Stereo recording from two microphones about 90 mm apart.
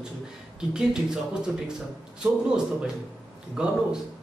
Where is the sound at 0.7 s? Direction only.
10° right (ahead or behind).